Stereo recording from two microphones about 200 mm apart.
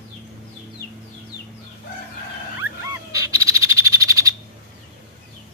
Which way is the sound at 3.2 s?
15° right (ahead or behind).